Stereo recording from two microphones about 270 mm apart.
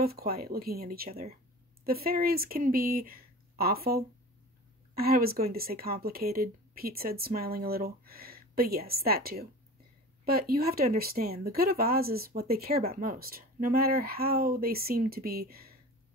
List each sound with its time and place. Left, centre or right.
0.0 s speech: right